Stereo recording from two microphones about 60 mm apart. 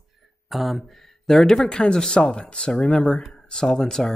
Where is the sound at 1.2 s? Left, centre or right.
Centre.